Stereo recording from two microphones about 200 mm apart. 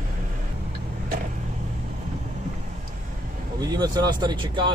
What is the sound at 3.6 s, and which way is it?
Speech, 20° right (ahead or behind).